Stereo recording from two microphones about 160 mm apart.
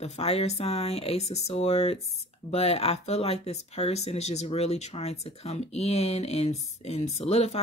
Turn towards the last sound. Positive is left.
turn(degrees=40)  # may be behind; listen again after turning